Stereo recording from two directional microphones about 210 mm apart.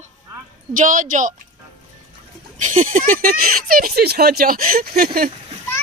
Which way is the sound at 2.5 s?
40° right (ahead or behind).